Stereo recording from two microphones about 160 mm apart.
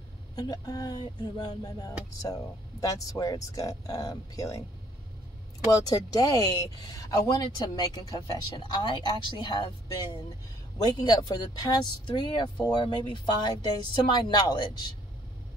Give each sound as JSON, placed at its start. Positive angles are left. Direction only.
{"t": 0.4, "sound": "speech", "side_deg": 25}
{"t": 5.7, "sound": "speech", "side_deg": 20}
{"t": 10.8, "sound": "speech", "side_deg": 25}